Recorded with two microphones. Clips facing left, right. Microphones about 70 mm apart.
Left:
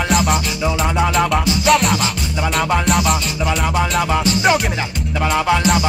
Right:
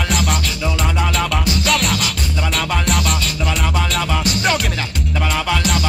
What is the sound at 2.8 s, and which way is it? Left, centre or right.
Music, centre.